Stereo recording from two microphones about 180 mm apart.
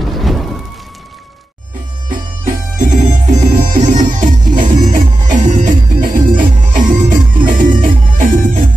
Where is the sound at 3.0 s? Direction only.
55° right (ahead or behind).